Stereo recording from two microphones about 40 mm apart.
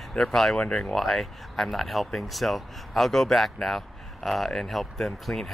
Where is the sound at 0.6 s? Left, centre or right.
Left.